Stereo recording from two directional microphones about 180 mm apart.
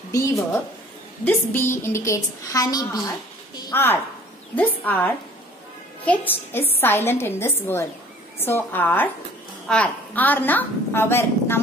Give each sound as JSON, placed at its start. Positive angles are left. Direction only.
{"t": 1.2, "sound": "a woman's voice", "side_deg": 15}